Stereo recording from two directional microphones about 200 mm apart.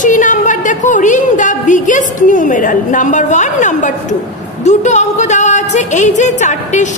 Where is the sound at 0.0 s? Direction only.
40° left (ahead or behind).